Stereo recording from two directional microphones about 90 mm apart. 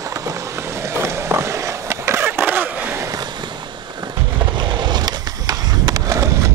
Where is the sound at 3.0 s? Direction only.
45° right (ahead or behind).